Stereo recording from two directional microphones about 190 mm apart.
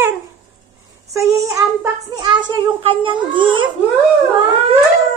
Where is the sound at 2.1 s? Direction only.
20° right (ahead or behind).